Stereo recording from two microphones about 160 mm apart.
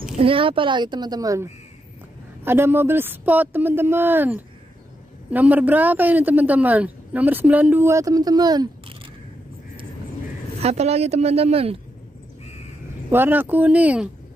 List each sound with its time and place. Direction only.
0.2 s a man's voice: 35° right (ahead or behind)
10.6 s speech: 40° right (ahead or behind)
13.1 s a man's voice: 10° right (ahead or behind)